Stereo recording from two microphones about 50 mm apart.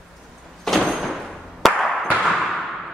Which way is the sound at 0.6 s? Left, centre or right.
Centre.